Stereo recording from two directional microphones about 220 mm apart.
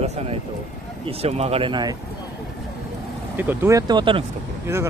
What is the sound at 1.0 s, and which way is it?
Speech, 25° right (ahead or behind).